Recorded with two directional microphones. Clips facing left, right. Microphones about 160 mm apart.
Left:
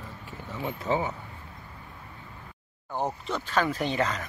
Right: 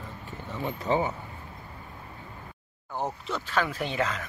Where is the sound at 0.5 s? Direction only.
5° left (ahead or behind).